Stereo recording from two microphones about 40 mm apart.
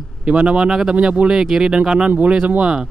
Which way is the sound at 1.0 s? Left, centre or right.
Right.